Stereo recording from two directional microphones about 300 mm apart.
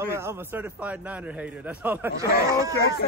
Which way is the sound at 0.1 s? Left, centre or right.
Centre.